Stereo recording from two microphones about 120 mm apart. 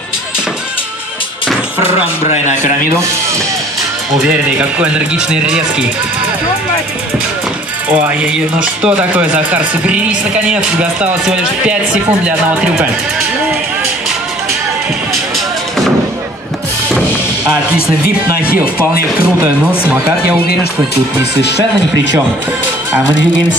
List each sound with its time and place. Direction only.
1.8 s speech: 55° left (ahead or behind)
4.2 s speech: 10° right (ahead or behind)
7.9 s speech: 10° right (ahead or behind)
19.9 s speech: 10° right (ahead or behind)